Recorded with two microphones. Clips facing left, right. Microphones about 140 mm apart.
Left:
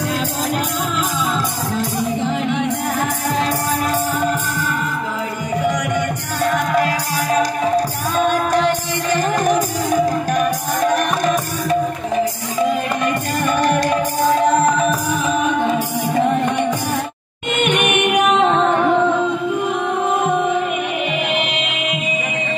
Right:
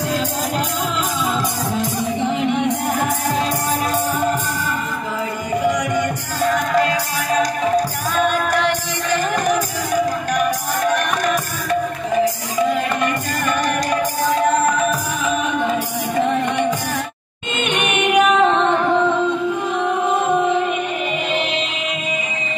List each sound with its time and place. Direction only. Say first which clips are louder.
17.6 s music: left 2 dB; 55° left (ahead or behind)